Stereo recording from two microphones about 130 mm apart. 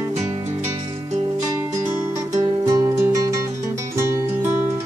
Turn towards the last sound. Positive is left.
turn(degrees=-25)  # may be behind; listen again after turning